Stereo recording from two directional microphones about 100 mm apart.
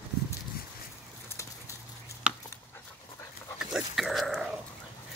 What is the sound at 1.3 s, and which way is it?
Bird, 30° left (ahead or behind).